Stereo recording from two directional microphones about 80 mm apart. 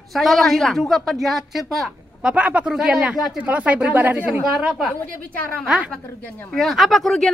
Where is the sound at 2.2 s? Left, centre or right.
Centre.